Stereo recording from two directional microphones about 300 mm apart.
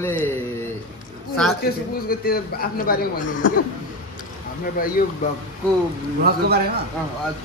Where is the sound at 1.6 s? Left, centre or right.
Left.